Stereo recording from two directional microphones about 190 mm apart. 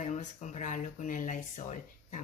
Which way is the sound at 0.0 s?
40° left (ahead or behind).